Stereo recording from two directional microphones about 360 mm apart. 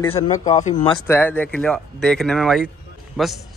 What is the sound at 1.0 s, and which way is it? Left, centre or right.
A man's voice, centre.